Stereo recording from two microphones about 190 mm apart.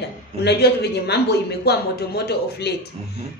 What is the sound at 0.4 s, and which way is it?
A woman's voice, 60° left (ahead or behind).